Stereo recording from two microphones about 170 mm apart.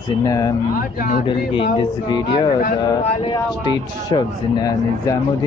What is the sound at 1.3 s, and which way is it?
Speech, 30° left (ahead or behind).